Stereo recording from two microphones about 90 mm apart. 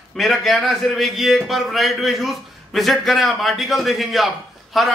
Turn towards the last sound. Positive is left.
turn(degrees=0)  # may be behind; listen again after turning